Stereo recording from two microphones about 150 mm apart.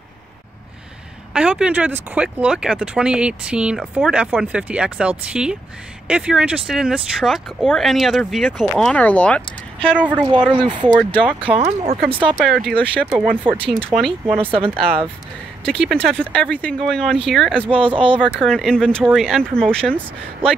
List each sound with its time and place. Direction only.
1.3 s speech: 5° right (ahead or behind)
10.1 s speech: 30° right (ahead or behind)
12.4 s speech: centre (ahead or behind)
13.9 s speech: 35° right (ahead or behind)
15.6 s speech: 5° left (ahead or behind)
17.6 s speech: 35° right (ahead or behind)
18.4 s speech: centre (ahead or behind)